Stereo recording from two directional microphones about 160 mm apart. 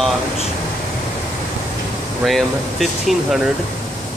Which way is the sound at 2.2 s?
Centre (ahead or behind).